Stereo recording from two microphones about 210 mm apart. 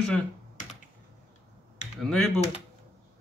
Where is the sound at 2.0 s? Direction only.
Centre (ahead or behind).